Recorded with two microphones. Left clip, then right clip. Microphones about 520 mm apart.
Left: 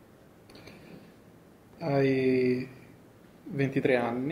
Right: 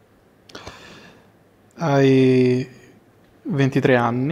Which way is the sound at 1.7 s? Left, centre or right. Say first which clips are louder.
Right 10 dB; right.